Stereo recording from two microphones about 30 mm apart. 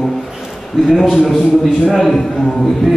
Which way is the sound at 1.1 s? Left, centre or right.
Centre.